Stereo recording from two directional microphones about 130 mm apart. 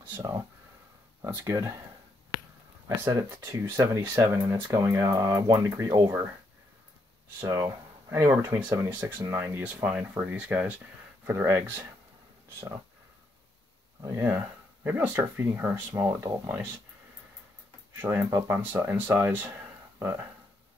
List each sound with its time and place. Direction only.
1.2 s speech: 20° right (ahead or behind)
3.0 s speech: 30° right (ahead or behind)
7.3 s speech: 25° right (ahead or behind)
14.0 s speech: 20° right (ahead or behind)
18.0 s speech: 15° right (ahead or behind)